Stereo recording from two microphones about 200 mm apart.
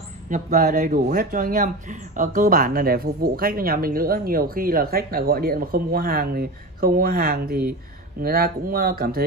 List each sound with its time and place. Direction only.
0.3 s speech: 40° right (ahead or behind)